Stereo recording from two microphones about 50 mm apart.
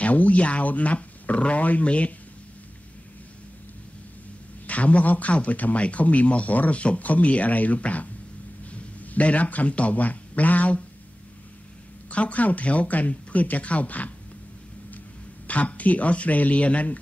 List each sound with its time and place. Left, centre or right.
0.0 s speech: left
4.6 s a man's voice: left
12.1 s speech: left
15.4 s speech: left